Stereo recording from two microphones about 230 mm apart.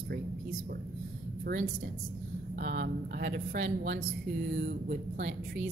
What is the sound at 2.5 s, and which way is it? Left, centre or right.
A woman's voice, right.